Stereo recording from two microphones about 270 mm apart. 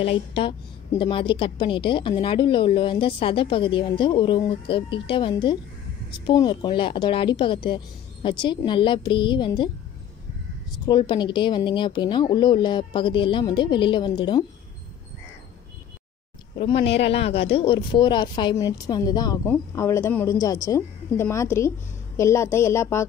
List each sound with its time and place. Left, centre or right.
0.0 s a woman's voice: left
10.9 s speech: centre
17.1 s speech: left